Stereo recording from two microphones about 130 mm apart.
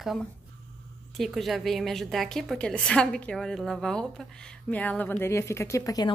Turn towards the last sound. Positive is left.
turn(degrees=30)  # may be behind; listen again after turning